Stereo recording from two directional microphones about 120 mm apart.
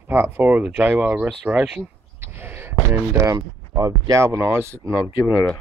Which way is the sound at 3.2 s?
25° right (ahead or behind).